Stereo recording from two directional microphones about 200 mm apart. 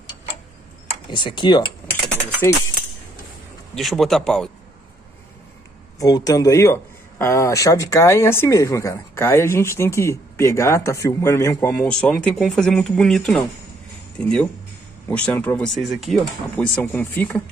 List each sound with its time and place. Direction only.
1.1 s speech: 25° left (ahead or behind)
3.7 s speech: centre (ahead or behind)
5.9 s speech: 20° left (ahead or behind)